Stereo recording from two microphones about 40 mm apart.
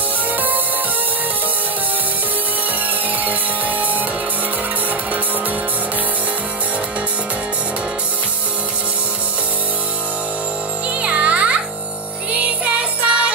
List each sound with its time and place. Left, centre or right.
3.3 s music: right
11.0 s music: right